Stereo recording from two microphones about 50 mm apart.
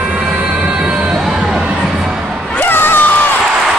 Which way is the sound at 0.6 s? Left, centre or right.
Right.